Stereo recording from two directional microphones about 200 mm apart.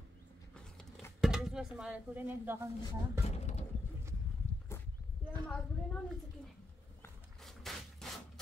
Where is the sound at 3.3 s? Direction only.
30° left (ahead or behind).